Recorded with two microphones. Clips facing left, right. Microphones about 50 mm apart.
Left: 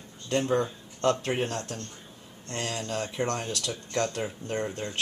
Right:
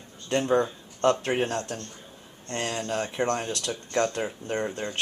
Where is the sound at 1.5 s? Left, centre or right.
Right.